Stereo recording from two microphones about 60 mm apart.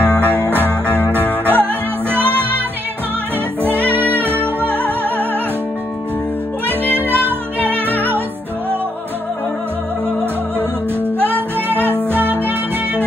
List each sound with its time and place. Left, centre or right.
0.0 s music: right
3.6 s music: right
6.9 s music: right
11.1 s music: right